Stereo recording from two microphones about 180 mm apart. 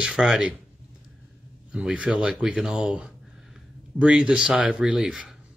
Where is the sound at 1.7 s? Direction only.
5° right (ahead or behind).